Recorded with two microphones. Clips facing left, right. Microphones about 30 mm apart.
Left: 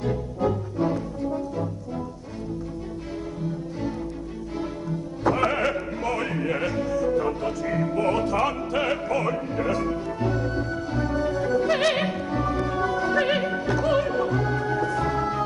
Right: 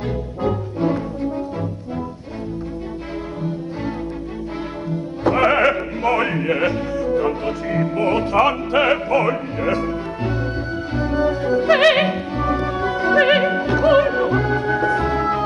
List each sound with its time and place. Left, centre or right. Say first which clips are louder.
0.4 s music: right 4 dB; right
4.8 s music: right 5 dB; right